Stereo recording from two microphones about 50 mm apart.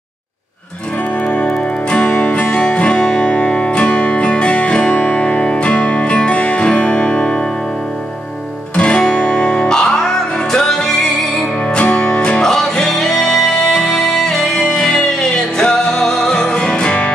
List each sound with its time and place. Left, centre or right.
1.2 s music: left
8.7 s guitar: centre
9.1 s music: left
11.7 s music: left
12.4 s music: centre